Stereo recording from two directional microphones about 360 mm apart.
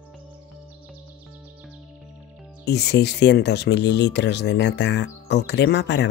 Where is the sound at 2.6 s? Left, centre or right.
Left.